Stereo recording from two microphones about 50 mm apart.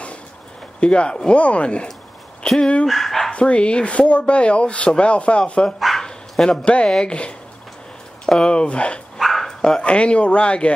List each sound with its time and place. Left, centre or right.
0.7 s speech: left
2.4 s speech: centre
3.3 s speech: left
5.8 s bow-wow: centre
6.6 s speech: left
8.5 s speech: left
9.2 s speech: centre; by 10.7 s left